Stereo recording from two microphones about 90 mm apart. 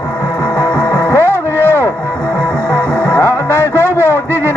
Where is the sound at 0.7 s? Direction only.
25° left (ahead or behind).